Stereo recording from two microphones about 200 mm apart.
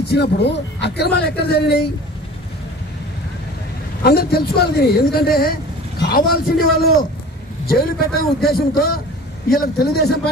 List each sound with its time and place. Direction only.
0.1 s speech: 55° left (ahead or behind)
4.0 s speech: 50° left (ahead or behind)